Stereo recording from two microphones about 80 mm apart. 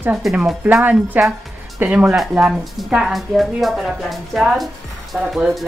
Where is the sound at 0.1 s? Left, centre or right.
Centre.